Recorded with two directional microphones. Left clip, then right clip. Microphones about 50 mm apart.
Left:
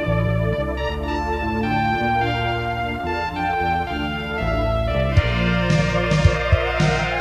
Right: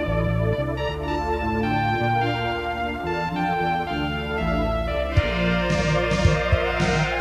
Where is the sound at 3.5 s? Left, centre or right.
Right.